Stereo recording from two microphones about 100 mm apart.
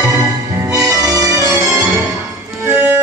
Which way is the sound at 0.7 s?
35° right (ahead or behind).